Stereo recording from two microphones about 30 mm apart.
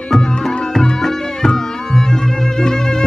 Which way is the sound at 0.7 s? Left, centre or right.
Centre.